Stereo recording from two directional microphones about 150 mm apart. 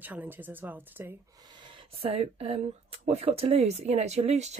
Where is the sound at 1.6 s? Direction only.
35° right (ahead or behind).